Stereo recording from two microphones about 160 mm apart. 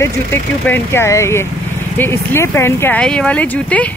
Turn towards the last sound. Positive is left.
turn(degrees=10)  # may be behind; listen again after turning